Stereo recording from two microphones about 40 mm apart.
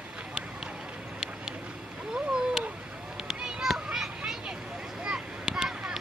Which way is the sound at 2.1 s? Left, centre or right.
Centre.